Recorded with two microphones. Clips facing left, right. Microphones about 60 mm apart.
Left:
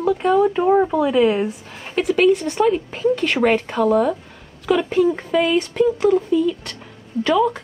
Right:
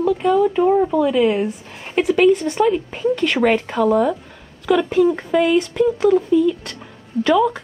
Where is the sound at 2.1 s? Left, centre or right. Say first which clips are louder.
Right 1 dB; centre.